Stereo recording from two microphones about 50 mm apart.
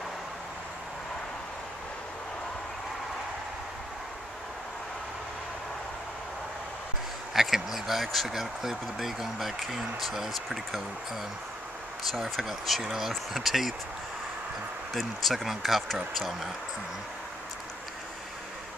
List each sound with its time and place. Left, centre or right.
7.3 s speech: centre
12.1 s speech: centre
15.0 s speech: centre